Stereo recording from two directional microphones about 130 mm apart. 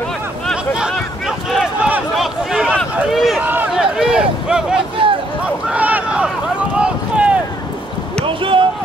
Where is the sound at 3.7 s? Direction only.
5° right (ahead or behind).